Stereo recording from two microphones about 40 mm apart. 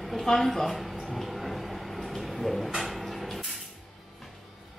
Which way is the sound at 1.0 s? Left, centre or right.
Centre.